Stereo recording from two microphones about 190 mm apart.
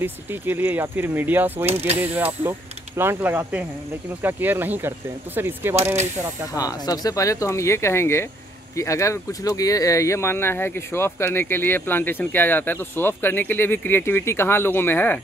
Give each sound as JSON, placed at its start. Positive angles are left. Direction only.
{"t": 0.0, "sound": "speech", "side_deg": -10}
{"t": 1.9, "sound": "speech", "side_deg": -35}
{"t": 3.0, "sound": "speech", "side_deg": -10}
{"t": 6.5, "sound": "speech", "side_deg": 20}